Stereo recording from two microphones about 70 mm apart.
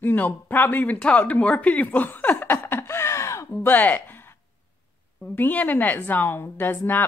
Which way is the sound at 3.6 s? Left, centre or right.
Left.